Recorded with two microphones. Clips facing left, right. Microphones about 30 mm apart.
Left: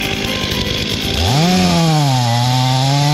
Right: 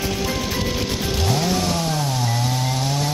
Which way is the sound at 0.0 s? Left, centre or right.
Left.